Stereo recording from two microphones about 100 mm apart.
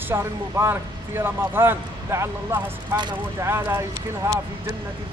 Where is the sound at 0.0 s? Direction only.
25° right (ahead or behind).